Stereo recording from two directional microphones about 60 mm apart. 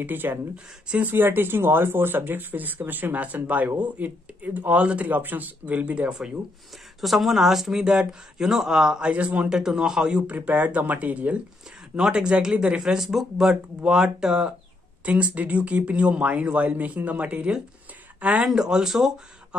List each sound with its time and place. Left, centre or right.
0.0 s speech: right
1.1 s speech: right
7.0 s speech: centre
9.1 s speech: right
10.3 s speech: right; by 19.1 s centre